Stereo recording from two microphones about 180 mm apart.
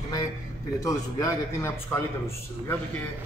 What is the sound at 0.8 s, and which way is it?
A man's voice, 20° left (ahead or behind).